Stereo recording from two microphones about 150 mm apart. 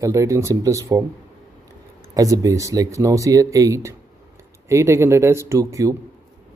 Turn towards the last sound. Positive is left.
turn(degrees=-20)  # may be behind; listen again after turning